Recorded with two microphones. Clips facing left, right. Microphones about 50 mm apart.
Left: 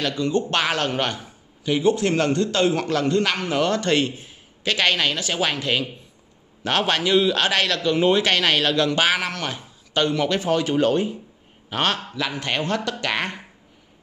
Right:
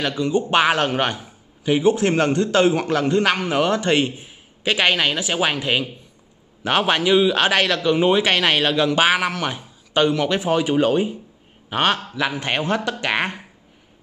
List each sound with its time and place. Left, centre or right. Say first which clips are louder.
0.2 s a man's voice: right 5 dB; centre